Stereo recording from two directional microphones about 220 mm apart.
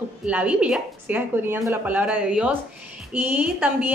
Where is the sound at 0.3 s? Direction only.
5° right (ahead or behind).